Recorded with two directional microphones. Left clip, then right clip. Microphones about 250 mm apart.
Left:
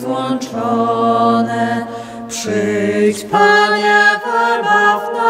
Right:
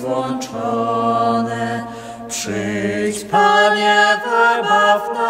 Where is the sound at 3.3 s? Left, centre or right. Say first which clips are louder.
Left 1 dB; left.